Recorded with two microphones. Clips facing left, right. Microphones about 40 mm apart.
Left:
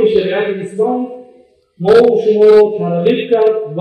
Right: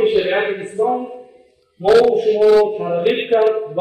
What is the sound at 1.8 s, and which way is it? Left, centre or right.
A man's voice, centre.